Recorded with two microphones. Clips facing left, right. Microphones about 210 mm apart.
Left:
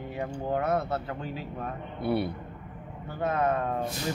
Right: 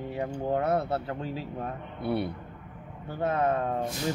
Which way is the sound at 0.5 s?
30° right (ahead or behind).